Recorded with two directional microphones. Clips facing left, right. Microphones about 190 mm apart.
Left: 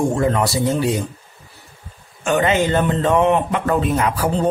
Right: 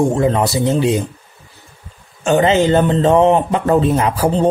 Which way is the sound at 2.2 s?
30° right (ahead or behind).